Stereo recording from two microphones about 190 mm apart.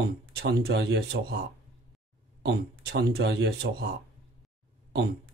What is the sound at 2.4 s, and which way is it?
Speech, 55° right (ahead or behind).